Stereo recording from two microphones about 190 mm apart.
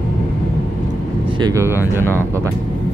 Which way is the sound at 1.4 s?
15° right (ahead or behind).